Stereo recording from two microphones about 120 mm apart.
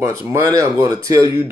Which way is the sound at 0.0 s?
25° right (ahead or behind).